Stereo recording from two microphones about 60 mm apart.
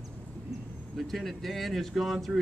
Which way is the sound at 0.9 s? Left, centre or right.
Centre.